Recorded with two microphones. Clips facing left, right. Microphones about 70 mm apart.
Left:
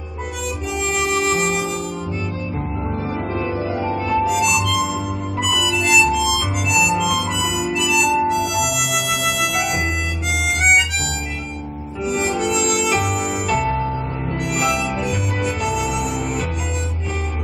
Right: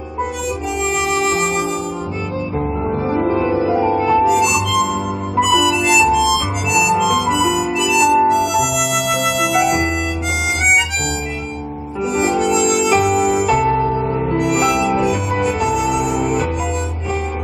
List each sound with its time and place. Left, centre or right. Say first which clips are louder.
1.0 s music: right 1 dB; centre
3.1 s music: right 9 dB; centre
5.3 s harmonica: right 8 dB; centre
12.0 s harmonica: right 4 dB; centre